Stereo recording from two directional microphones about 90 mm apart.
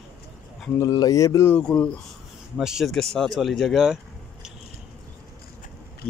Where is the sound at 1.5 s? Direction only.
10° left (ahead or behind).